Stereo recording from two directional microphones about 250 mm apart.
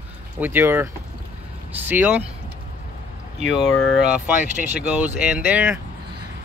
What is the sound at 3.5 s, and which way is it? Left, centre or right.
Speech, centre.